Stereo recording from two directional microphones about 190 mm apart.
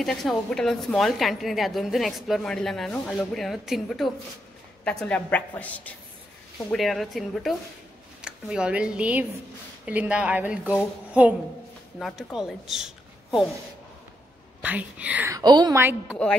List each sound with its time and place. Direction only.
0.0 s a woman's voice: centre (ahead or behind)
14.6 s a woman's voice: 10° right (ahead or behind)
15.3 s a woman's voice: 20° right (ahead or behind)
15.8 s a woman's voice: 10° right (ahead or behind)